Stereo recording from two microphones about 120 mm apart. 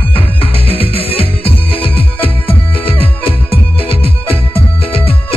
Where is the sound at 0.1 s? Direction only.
50° left (ahead or behind).